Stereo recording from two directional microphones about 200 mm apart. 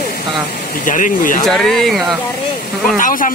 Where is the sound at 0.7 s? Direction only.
40° left (ahead or behind).